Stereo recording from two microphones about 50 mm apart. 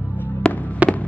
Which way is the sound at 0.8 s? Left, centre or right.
Right.